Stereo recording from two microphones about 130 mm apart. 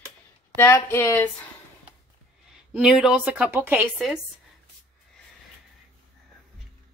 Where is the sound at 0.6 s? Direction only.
20° left (ahead or behind).